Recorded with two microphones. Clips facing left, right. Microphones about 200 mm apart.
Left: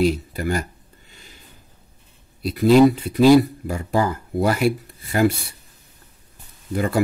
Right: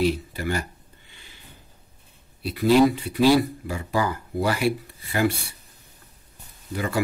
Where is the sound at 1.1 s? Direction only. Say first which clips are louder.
Left 4 dB; 40° left (ahead or behind).